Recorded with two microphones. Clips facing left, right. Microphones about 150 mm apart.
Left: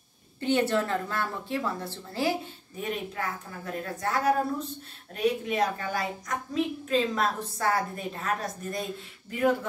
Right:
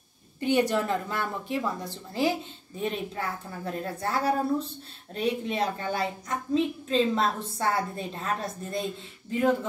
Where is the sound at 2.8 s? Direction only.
30° right (ahead or behind).